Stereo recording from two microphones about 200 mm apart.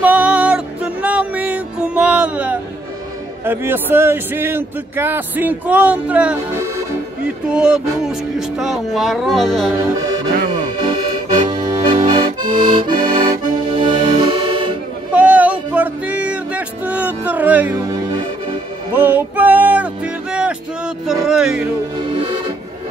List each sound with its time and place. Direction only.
0.0 s music: 5° right (ahead or behind)
3.4 s a man's voice: 10° right (ahead or behind)
11.3 s accordion: 25° right (ahead or behind)
12.4 s accordion: 45° right (ahead or behind)
12.7 s accordion: 20° right (ahead or behind)
13.1 s accordion: 40° right (ahead or behind)
13.7 s music: 25° right (ahead or behind)
15.1 s music: 10° right (ahead or behind)
18.9 s music: 10° right (ahead or behind)